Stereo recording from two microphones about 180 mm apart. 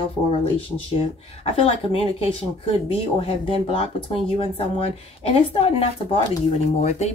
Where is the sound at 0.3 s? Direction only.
30° left (ahead or behind).